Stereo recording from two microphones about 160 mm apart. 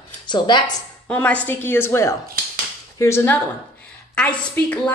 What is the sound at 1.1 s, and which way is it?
A woman's voice, 10° left (ahead or behind).